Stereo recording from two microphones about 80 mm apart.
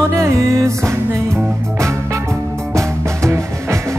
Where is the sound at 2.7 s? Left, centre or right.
Right.